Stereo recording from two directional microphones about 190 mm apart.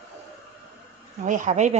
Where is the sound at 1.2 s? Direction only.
40° right (ahead or behind).